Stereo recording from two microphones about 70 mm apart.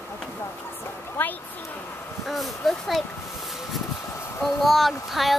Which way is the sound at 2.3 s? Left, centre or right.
Centre.